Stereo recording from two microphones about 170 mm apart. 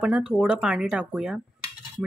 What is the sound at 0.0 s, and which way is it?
Speech, 5° right (ahead or behind).